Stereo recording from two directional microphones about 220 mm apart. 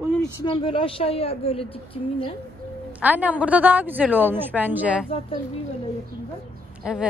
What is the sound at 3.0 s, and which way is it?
Speech, 5° right (ahead or behind).